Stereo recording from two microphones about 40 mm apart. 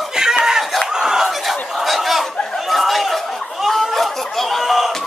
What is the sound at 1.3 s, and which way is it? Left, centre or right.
Chicken, centre.